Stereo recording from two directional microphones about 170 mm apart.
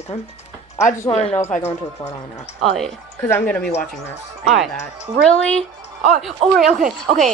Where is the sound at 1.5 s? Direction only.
40° left (ahead or behind).